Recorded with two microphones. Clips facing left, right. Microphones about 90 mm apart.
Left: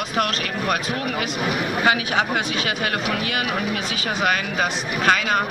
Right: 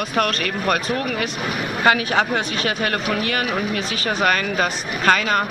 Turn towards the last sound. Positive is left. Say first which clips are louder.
# right 1 dB
turn(degrees=-50)  # may be behind; listen again after turning